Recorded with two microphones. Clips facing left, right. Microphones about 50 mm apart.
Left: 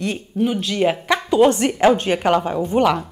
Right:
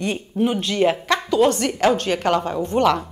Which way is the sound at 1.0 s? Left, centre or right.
Centre.